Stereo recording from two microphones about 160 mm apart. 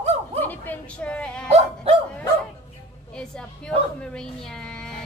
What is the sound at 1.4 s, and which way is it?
Speech, 40° right (ahead or behind).